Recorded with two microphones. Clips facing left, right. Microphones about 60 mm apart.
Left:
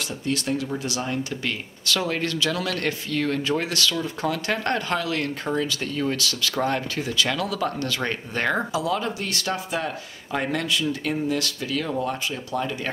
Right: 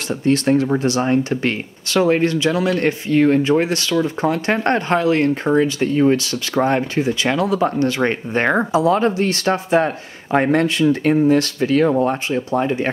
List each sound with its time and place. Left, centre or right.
0.1 s speech: right